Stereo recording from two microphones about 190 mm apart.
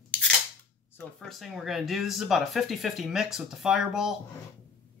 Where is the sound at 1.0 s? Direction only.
5° left (ahead or behind).